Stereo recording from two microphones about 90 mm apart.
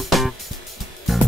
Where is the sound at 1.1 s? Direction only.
Centre (ahead or behind).